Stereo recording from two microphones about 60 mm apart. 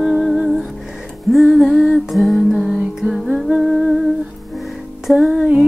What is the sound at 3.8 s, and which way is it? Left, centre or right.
Music, centre.